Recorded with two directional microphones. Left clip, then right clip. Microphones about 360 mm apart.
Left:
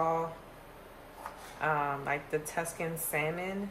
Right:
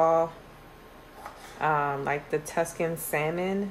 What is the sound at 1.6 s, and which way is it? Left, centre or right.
Speech, right.